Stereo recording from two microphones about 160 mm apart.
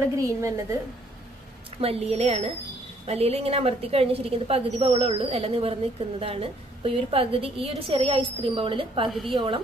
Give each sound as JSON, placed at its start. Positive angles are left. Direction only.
{"t": 0.2, "sound": "a woman's voice", "side_deg": -20}
{"t": 1.8, "sound": "a woman's voice", "side_deg": -40}